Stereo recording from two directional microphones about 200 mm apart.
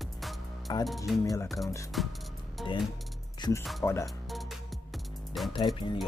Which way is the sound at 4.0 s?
Centre (ahead or behind).